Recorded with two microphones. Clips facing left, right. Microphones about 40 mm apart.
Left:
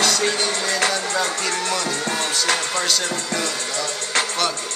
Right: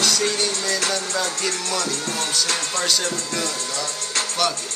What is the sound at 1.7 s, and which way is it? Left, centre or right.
Music, left.